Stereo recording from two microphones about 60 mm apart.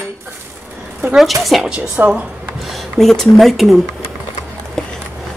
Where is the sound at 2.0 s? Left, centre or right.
Right.